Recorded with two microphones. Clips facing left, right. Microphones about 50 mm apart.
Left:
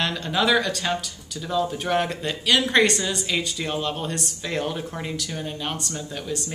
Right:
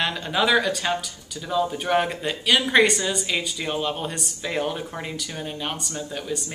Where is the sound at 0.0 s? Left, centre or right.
Centre.